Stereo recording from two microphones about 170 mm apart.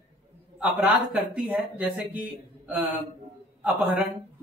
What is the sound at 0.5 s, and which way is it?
A man's voice, 10° right (ahead or behind).